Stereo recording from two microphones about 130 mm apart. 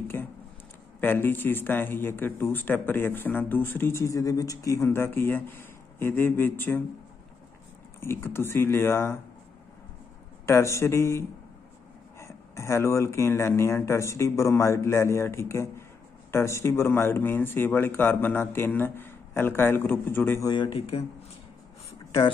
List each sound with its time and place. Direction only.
0.1 s a sound: 15° left (ahead or behind)
1.0 s speech: 15° left (ahead or behind)
8.0 s speech: 20° left (ahead or behind)
10.4 s speech: 20° left (ahead or behind)
20.4 s speech: 35° left (ahead or behind)